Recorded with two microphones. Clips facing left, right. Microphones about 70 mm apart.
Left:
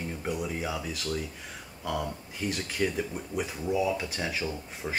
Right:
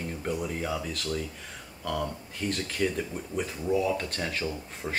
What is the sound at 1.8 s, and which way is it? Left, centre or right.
Speech, centre.